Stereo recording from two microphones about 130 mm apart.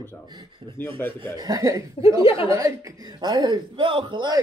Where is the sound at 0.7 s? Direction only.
15° left (ahead or behind).